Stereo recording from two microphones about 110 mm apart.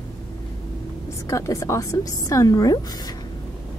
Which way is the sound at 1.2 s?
25° left (ahead or behind).